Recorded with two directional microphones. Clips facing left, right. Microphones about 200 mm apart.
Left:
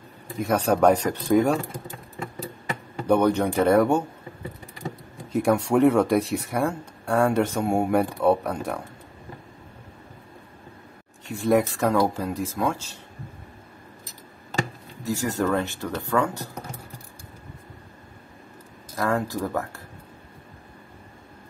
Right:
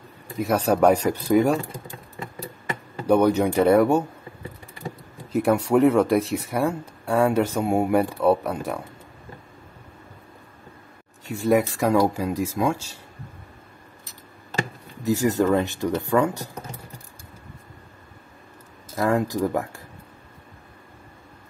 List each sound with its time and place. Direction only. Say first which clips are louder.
0.4 s speech: right 1 dB; 5° right (ahead or behind)
3.1 s speech: right 2 dB; 10° right (ahead or behind)
5.3 s speech: right 1 dB; centre (ahead or behind)
11.4 s speech: right 1 dB; 10° right (ahead or behind)
15.0 s speech: right 5 dB; 15° right (ahead or behind)
18.9 s speech: right 3 dB; 15° right (ahead or behind)